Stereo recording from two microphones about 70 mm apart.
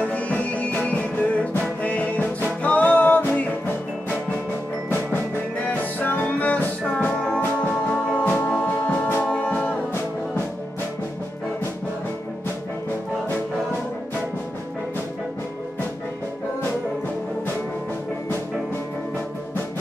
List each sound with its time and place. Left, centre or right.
0.0 s music: centre